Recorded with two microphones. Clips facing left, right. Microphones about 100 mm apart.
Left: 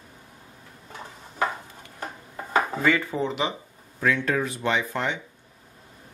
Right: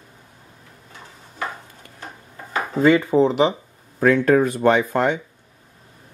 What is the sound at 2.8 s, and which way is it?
Speech, 20° right (ahead or behind).